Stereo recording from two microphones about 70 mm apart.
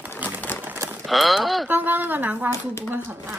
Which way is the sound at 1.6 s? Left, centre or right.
Right.